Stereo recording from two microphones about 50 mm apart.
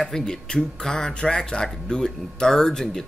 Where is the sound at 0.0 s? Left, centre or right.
Centre.